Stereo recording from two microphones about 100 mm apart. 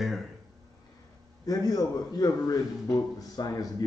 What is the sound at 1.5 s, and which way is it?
Speech, 40° left (ahead or behind).